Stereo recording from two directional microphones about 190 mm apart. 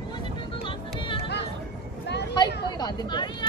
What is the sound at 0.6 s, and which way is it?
Music, 25° left (ahead or behind).